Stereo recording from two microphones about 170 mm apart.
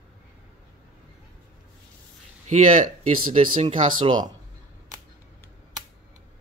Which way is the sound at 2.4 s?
50° right (ahead or behind).